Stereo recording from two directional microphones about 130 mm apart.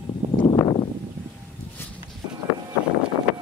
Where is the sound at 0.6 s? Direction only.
35° left (ahead or behind).